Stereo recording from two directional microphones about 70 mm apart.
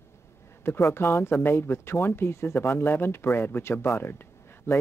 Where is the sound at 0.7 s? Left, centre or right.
Left.